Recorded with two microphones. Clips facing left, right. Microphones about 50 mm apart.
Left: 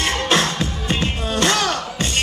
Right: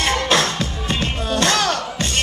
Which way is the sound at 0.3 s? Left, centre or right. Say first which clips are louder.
Even; left.